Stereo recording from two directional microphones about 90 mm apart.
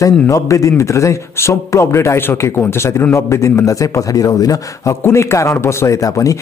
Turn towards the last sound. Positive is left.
turn(degrees=40)  # may be behind; listen again after turning